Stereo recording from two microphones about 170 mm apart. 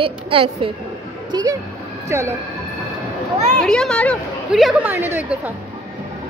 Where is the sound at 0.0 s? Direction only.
30° right (ahead or behind).